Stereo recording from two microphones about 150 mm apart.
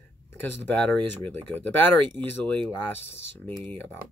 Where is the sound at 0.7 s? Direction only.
10° left (ahead or behind).